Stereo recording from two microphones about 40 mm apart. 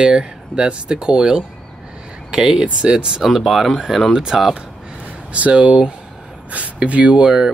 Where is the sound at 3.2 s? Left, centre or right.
Centre.